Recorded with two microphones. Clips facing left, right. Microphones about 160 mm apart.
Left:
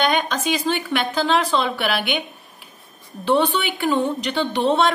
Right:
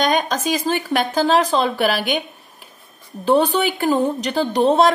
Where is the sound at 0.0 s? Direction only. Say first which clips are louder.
Right 2 dB; 40° right (ahead or behind).